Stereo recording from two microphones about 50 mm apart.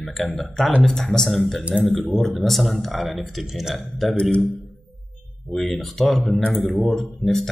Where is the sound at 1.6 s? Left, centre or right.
Right.